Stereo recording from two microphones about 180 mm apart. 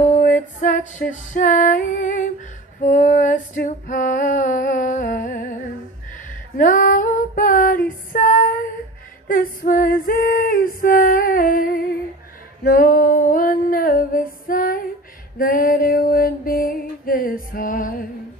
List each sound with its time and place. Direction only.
0.0 s music: 45° left (ahead or behind)
2.8 s female singing: 45° left (ahead or behind)
9.3 s a capella: 50° left (ahead or behind)
12.6 s music: 50° left (ahead or behind)
15.3 s a sound: 50° left (ahead or behind)